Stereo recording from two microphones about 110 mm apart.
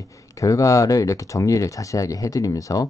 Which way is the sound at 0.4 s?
30° left (ahead or behind).